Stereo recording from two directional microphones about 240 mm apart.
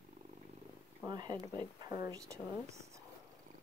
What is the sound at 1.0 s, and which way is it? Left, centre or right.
Speech, centre.